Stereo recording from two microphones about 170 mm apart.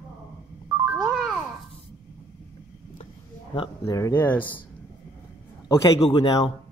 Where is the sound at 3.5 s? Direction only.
30° left (ahead or behind); by 4.6 s 10° left (ahead or behind).